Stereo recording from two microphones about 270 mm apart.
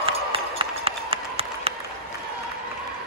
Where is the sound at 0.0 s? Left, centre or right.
Centre.